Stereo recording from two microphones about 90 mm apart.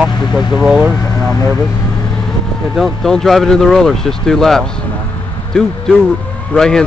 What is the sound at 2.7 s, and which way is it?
Speech, centre (ahead or behind).